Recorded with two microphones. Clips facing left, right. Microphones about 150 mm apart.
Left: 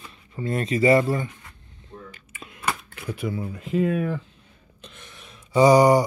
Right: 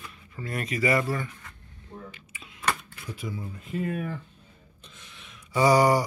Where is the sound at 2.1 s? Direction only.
50° left (ahead or behind).